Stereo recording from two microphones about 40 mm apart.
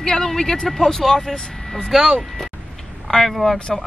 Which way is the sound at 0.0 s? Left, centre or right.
Centre.